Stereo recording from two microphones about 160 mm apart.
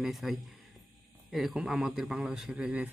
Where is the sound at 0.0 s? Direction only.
Centre (ahead or behind).